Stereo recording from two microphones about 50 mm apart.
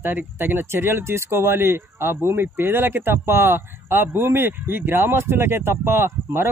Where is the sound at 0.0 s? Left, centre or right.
Right.